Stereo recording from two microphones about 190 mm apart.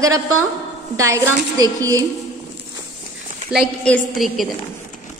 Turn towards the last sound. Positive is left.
turn(degrees=0)  # may be behind; listen again after turning